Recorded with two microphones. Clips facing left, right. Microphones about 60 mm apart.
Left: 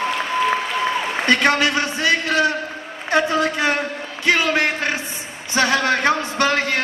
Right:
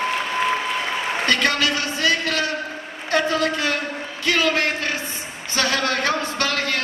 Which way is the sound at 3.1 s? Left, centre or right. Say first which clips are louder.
Left 2 dB; left.